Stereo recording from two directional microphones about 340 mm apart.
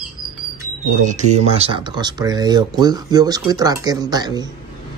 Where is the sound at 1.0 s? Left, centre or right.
Right.